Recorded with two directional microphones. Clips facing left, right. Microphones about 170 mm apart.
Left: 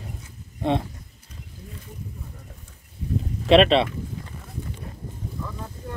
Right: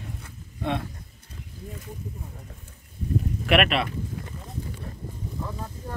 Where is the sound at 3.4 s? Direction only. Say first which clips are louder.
Left 7 dB; 25° left (ahead or behind).